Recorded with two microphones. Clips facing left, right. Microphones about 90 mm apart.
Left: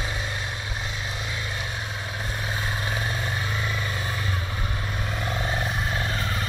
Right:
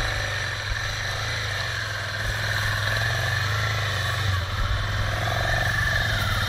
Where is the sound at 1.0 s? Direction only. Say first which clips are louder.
Right 1 dB; 30° right (ahead or behind).